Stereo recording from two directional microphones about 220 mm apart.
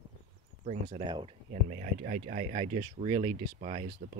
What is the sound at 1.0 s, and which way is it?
Speech, 20° right (ahead or behind).